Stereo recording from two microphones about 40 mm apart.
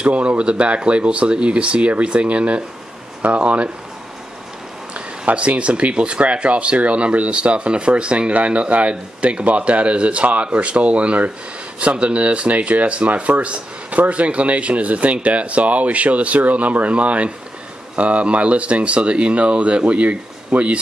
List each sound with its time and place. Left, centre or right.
0.0 s speech: right
4.9 s speech: right